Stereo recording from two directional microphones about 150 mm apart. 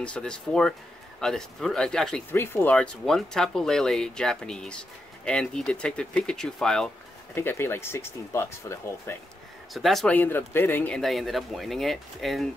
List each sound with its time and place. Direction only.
0.0 s speech: 5° left (ahead or behind)
2.3 s speech: 15° left (ahead or behind)
7.3 s speech: 15° left (ahead or behind)
9.8 s speech: centre (ahead or behind)
10.1 s speech: 15° left (ahead or behind)